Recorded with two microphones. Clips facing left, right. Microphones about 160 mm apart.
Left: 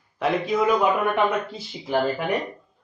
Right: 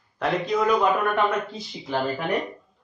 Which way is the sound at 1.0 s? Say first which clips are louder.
Left 1 dB; 20° left (ahead or behind).